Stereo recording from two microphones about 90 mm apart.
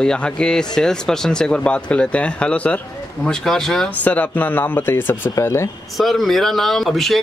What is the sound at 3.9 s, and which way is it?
Speech, 15° left (ahead or behind).